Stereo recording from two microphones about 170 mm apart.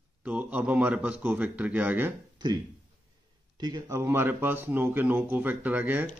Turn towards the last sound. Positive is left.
turn(degrees=-10)  # may be behind; listen again after turning